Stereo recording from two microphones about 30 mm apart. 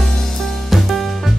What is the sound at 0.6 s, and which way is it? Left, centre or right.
Music, centre.